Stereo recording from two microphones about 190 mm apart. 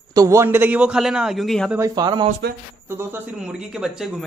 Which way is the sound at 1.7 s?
20° right (ahead or behind).